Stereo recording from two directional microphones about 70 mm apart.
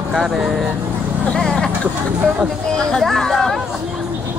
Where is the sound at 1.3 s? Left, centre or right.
Centre.